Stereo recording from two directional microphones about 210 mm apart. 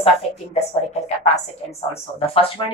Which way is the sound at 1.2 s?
30° left (ahead or behind).